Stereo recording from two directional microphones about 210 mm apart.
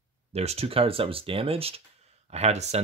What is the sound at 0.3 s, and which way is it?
Speech, 30° right (ahead or behind).